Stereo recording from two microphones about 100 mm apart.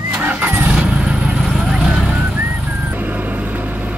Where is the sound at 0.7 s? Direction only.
10° right (ahead or behind).